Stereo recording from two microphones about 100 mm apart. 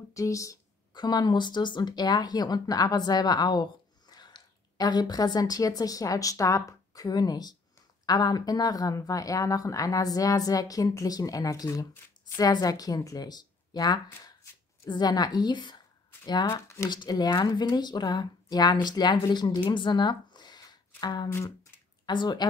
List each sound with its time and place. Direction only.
0.1 s speech: 35° left (ahead or behind)
0.9 s a woman's voice: 45° left (ahead or behind)
16.5 s speech: 30° left (ahead or behind)
16.9 s speech: 45° left (ahead or behind)
19.7 s a sound: 50° left (ahead or behind)
22.0 s speech: 50° left (ahead or behind)